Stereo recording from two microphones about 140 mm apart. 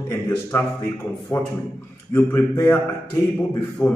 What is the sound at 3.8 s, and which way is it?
Speech, 10° left (ahead or behind).